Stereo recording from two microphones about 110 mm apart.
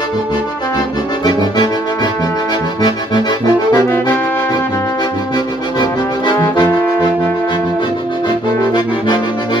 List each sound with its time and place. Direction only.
3.7 s brass instrument: 20° left (ahead or behind)
6.5 s brass instrument: 40° left (ahead or behind)
8.7 s brass instrument: 45° left (ahead or behind)